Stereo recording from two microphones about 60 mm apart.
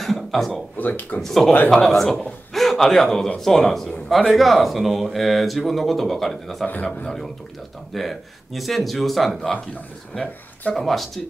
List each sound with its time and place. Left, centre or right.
0.0 s a sound: centre
0.7 s speech: left
1.2 s a man's voice: centre
6.7 s speech: left
7.9 s speech: centre
10.7 s speech: centre